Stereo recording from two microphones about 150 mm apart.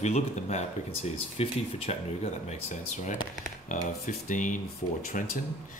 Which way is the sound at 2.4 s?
55° left (ahead or behind).